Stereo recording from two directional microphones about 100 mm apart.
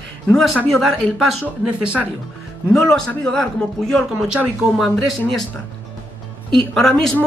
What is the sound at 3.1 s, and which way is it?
Speech, 10° left (ahead or behind).